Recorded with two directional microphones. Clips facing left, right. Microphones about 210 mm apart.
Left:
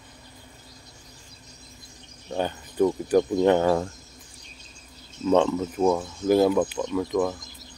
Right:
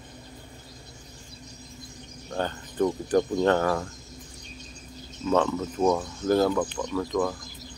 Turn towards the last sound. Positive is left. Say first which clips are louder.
# left 2 dB
turn(degrees=20)  # may be behind; listen again after turning